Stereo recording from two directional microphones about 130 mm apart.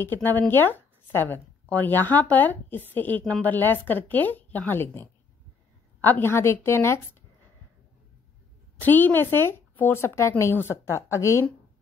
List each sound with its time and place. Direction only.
0.0 s a woman's voice: 15° left (ahead or behind)
8.7 s a woman's voice: 15° left (ahead or behind)